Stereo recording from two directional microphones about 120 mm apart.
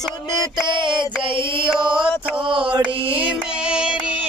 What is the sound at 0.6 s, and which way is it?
Music, 40° right (ahead or behind).